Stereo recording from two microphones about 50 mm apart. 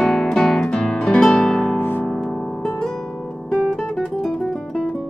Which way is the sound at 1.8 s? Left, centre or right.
Left.